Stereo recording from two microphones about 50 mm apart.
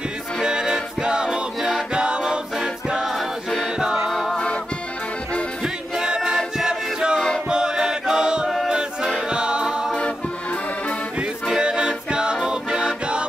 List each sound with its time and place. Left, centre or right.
0.4 s music: centre
2.0 s choir: centre
3.7 s music: centre
4.1 s music: centre
5.6 s music: centre
6.3 s choir: centre
7.2 s music: centre
7.4 s chant: centre
8.6 s music: centre
11.4 s music: centre